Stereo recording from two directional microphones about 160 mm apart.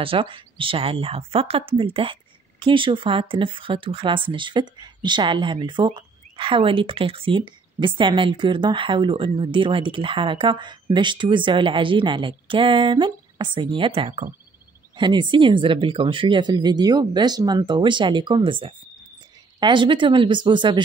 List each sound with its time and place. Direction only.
0.0 s speech: 35° right (ahead or behind)